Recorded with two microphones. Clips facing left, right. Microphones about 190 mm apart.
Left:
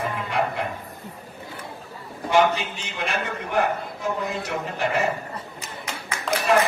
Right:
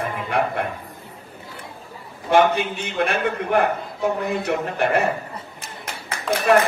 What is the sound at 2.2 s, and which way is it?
A man's voice, 55° right (ahead or behind).